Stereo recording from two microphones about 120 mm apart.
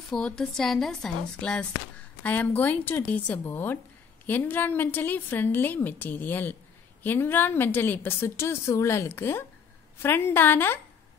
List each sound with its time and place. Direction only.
0.1 s a woman's voice: 5° left (ahead or behind)